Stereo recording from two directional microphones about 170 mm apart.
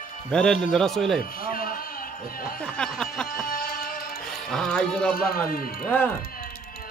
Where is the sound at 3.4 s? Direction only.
55° left (ahead or behind).